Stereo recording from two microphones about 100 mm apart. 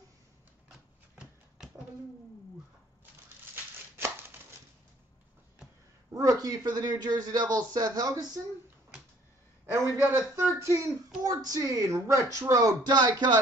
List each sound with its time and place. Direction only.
0.7 s a sound: 5° right (ahead or behind)
3.9 s chopping: 25° right (ahead or behind)
6.1 s speech: 35° right (ahead or behind)
9.8 s a man's voice: 30° right (ahead or behind)
11.2 s speech: 40° right (ahead or behind)